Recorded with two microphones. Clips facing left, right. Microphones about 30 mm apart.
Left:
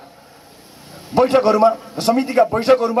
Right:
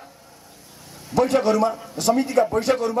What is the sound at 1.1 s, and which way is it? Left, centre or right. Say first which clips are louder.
A man's voice: left 5 dB; left.